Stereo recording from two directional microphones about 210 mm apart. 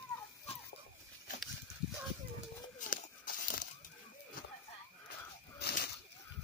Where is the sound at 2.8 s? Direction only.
40° left (ahead or behind).